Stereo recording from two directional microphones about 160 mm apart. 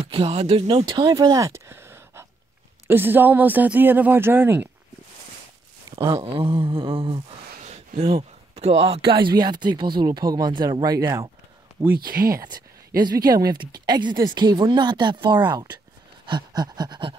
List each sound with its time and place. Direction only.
0.0 s speech: 40° right (ahead or behind); by 4.6 s 10° right (ahead or behind)
5.9 s a sound: 15° right (ahead or behind)
6.1 s mantra: 35° right (ahead or behind)
7.6 s speech: 45° right (ahead or behind); by 11.2 s 20° right (ahead or behind)
11.9 s speech: 65° right (ahead or behind)
13.0 s speech: 25° right (ahead or behind)